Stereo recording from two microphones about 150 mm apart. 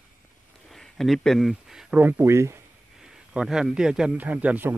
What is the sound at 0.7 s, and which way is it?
Speech, centre (ahead or behind).